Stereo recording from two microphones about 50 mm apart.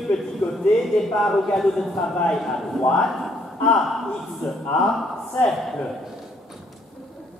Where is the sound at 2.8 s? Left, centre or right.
Centre.